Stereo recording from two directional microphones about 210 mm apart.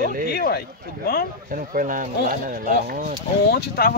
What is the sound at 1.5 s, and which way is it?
Speech, 40° right (ahead or behind).